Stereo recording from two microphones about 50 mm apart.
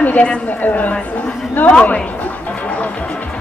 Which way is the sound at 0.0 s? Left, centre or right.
Left.